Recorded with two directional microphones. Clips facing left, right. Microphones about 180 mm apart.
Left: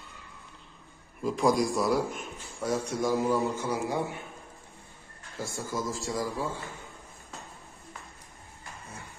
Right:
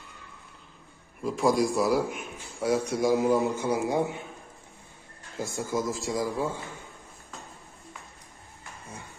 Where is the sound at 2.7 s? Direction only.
15° right (ahead or behind).